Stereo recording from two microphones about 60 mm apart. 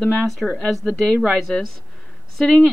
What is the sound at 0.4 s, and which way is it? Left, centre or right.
A woman's voice, centre.